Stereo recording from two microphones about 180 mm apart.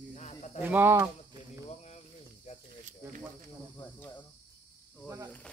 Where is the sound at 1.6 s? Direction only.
40° left (ahead or behind).